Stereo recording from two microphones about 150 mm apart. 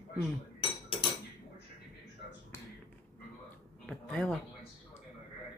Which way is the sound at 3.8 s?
5° left (ahead or behind).